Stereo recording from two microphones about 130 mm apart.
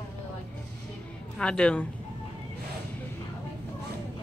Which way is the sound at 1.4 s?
10° left (ahead or behind).